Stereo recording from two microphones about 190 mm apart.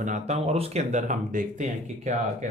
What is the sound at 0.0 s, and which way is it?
Speech, 35° right (ahead or behind).